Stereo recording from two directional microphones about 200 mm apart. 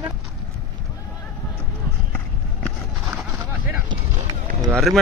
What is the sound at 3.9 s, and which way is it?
Run, 20° right (ahead or behind).